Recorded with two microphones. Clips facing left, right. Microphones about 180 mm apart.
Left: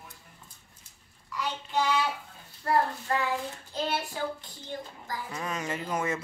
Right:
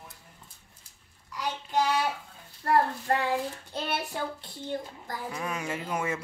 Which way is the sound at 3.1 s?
55° right (ahead or behind).